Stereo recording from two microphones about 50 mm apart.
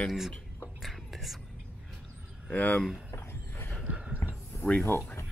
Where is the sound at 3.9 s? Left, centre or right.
Right.